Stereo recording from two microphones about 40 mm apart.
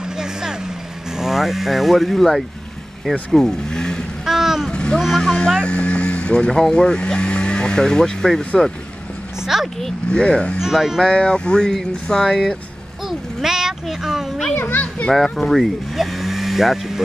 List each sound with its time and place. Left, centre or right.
0.2 s vehicle: centre
1.1 s speech: centre
4.3 s vehicle: centre
4.6 s vehicle: left
5.7 s vehicle: left
6.7 s speech: left
9.5 s speech: centre
10.1 s speech: left
10.6 s speech: centre
11.1 s speech: left
13.4 s a sound: centre
15.1 s speech: centre